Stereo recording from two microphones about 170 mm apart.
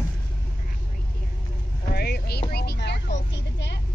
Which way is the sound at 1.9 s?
70° left (ahead or behind).